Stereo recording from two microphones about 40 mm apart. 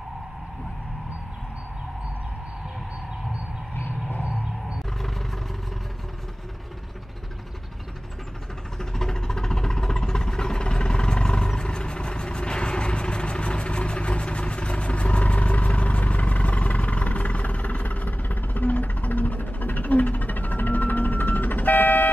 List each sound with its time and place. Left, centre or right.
8.7 s vehicle: centre; by 22.1 s left